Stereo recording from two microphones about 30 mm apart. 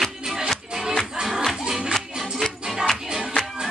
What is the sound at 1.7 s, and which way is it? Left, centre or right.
Music, right.